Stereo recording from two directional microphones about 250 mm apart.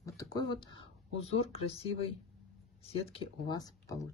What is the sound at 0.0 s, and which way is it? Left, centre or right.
Speech, centre.